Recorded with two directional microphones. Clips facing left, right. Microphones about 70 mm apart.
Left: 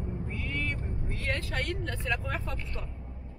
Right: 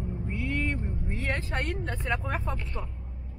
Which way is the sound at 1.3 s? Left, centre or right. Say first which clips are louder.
Right 2 dB; right.